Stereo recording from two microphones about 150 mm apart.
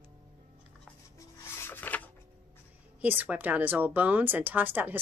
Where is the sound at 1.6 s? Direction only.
10° left (ahead or behind).